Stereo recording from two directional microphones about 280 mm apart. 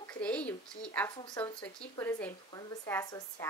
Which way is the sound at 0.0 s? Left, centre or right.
Centre.